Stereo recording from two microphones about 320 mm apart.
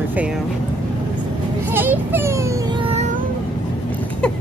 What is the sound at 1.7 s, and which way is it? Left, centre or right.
Speech, centre.